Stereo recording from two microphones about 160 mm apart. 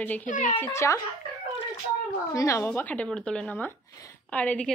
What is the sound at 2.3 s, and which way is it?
A woman's voice, 20° left (ahead or behind).